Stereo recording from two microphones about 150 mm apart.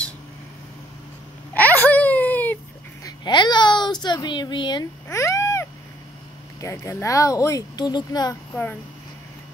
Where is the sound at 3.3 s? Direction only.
30° left (ahead or behind).